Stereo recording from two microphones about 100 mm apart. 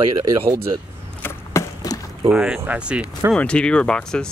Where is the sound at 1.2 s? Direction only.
30° left (ahead or behind).